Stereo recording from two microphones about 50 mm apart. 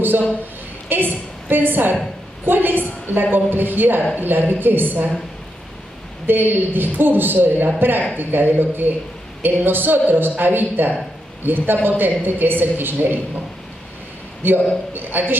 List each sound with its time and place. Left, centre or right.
0.8 s a woman's voice: right
6.2 s a woman's voice: right
14.4 s a woman's voice: right